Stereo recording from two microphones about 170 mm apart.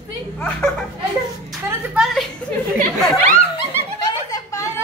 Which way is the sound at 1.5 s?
Centre (ahead or behind).